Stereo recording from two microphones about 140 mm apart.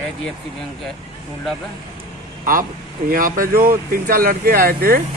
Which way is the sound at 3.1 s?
90° right.